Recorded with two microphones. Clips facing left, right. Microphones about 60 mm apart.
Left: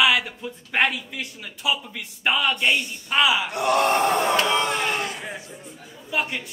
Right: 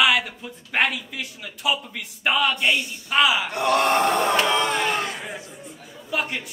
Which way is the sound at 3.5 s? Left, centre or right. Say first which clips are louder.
Even; right.